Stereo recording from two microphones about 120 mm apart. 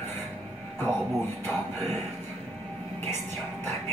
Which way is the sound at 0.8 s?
20° left (ahead or behind).